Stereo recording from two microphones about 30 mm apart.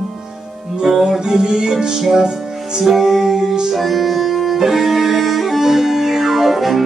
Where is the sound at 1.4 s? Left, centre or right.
Right.